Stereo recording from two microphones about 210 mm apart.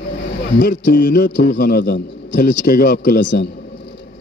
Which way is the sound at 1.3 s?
50° left (ahead or behind).